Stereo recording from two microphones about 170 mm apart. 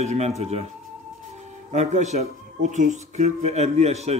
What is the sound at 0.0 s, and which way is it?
Speech, 40° right (ahead or behind).